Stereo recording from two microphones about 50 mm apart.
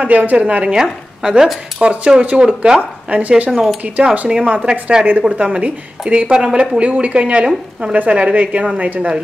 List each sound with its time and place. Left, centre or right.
0.0 s speech: right
1.2 s speech: centre
3.1 s speech: right